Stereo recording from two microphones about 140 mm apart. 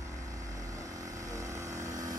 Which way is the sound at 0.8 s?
25° right (ahead or behind).